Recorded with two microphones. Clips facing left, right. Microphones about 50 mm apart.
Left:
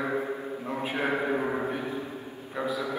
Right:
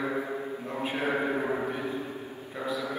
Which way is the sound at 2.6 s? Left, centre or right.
Left.